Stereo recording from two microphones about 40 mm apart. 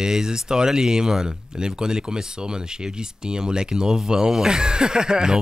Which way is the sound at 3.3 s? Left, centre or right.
Right.